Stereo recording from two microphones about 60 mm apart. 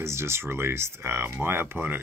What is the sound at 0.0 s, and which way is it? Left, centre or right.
Speech, right.